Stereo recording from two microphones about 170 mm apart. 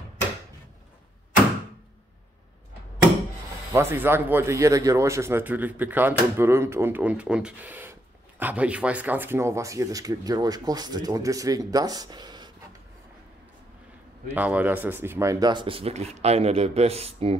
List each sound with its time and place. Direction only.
3.7 s speech: 15° right (ahead or behind)
14.3 s speech: 10° right (ahead or behind); by 17.4 s 35° right (ahead or behind)